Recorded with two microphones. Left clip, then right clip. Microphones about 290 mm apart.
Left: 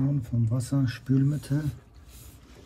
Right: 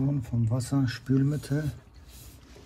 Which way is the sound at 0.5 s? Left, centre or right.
Centre.